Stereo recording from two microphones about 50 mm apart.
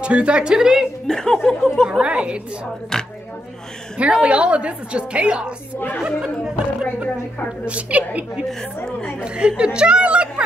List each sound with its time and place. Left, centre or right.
0.0 s a woman's voice: right
1.0 s speech: centre
1.9 s a woman's voice: centre
2.9 s speech: centre
4.0 s a woman's voice: right
7.6 s a woman's voice: right
9.6 s speech: centre